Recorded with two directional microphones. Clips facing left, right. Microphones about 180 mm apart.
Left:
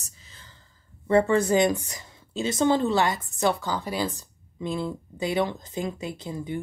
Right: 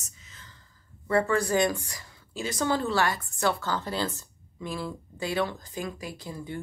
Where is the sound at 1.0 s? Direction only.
25° left (ahead or behind).